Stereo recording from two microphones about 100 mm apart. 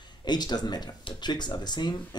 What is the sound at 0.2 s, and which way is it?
Speech, 45° left (ahead or behind).